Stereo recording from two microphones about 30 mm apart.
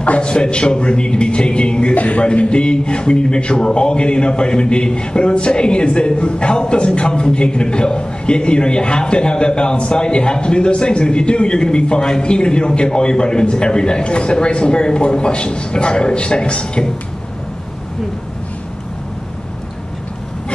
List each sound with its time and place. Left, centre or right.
0.2 s a man's voice: left
2.0 s a man's voice: left
2.3 s a man's voice: left